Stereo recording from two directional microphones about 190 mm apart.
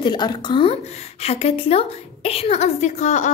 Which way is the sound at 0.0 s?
20° left (ahead or behind).